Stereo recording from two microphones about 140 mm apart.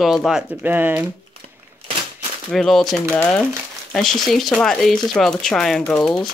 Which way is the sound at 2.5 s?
Centre (ahead or behind).